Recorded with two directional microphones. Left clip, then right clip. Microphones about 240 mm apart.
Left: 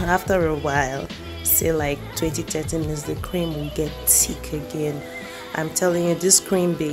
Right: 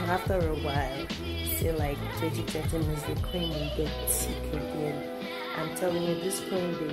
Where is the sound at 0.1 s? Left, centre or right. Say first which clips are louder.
Left 10 dB; left.